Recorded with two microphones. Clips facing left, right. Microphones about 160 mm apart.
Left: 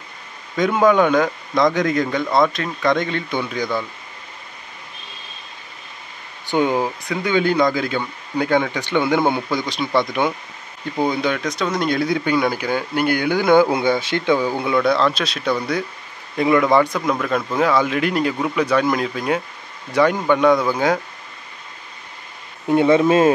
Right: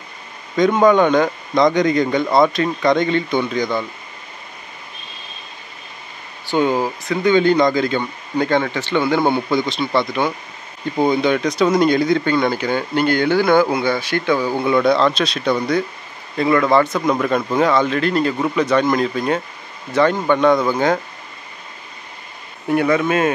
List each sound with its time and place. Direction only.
0.6 s speech: 5° left (ahead or behind)
6.4 s speech: 20° left (ahead or behind)
7.1 s speech: 5° left (ahead or behind)
11.3 s speech: centre (ahead or behind)
11.9 s speech: 5° left (ahead or behind)
14.6 s speech: 5° left (ahead or behind)
22.7 s speech: 25° left (ahead or behind)